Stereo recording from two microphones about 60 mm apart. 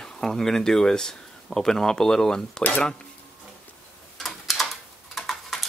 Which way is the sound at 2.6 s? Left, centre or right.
Left.